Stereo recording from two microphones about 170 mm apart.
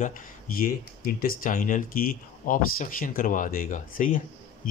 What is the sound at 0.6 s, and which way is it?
Speech, 60° left (ahead or behind).